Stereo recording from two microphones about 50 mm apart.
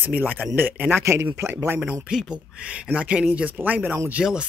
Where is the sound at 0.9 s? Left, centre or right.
Right.